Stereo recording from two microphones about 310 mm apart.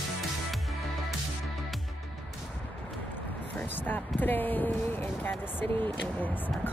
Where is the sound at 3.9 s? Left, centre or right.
Centre.